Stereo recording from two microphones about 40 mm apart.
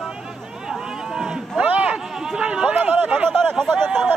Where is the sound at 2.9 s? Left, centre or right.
Right.